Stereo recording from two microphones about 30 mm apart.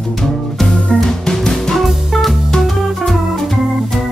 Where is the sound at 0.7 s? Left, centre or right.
Left.